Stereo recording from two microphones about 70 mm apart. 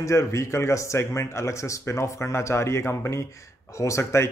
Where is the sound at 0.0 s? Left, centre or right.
Left.